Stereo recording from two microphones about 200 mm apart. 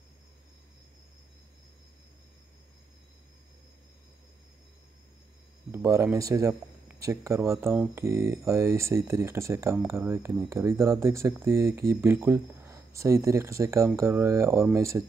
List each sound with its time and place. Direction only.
5.7 s speech: 15° right (ahead or behind)